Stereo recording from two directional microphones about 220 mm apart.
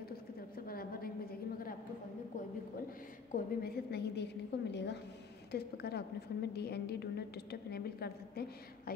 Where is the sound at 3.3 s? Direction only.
45° left (ahead or behind).